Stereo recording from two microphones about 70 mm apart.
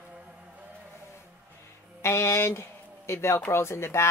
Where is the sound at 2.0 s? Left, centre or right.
Left.